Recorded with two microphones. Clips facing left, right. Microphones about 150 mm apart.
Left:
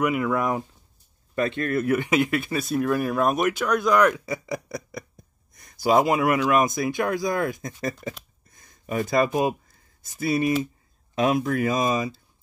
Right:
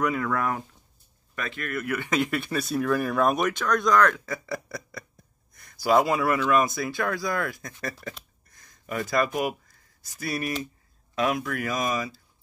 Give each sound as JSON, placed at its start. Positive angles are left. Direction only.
{"t": 0.0, "sound": "speech", "side_deg": 10}
{"t": 1.3, "sound": "speech", "side_deg": 30}
{"t": 2.0, "sound": "speech", "side_deg": 10}
{"t": 8.5, "sound": "a sound", "side_deg": 25}
{"t": 10.0, "sound": "speech", "side_deg": 25}